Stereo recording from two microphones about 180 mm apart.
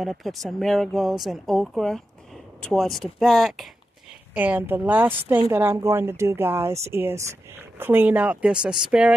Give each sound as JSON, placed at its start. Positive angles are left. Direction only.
{"t": 0.0, "sound": "speech", "side_deg": 0}